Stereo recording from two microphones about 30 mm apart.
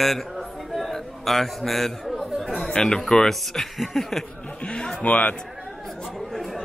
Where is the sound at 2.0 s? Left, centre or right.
Centre.